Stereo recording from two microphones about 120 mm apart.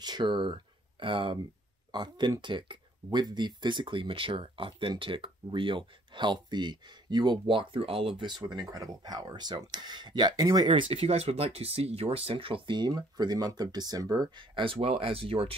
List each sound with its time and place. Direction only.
0.0 s speech: 35° right (ahead or behind)
8.2 s speech: 40° right (ahead or behind)
10.9 s speech: 60° right (ahead or behind)